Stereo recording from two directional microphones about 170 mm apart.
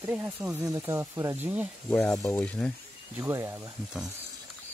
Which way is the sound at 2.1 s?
15° left (ahead or behind).